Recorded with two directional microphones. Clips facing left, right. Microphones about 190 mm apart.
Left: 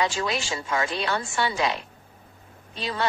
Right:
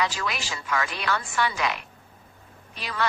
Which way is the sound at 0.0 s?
25° left (ahead or behind).